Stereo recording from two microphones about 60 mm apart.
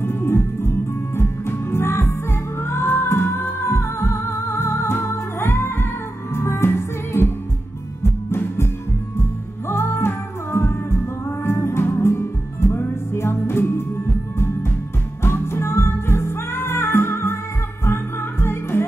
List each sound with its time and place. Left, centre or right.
0.0 s music: left
9.7 s music: left
15.2 s music: left